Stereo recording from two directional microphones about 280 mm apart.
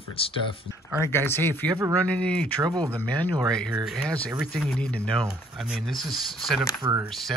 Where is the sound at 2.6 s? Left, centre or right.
Centre.